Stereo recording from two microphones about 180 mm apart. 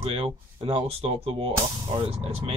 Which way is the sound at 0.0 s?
30° right (ahead or behind).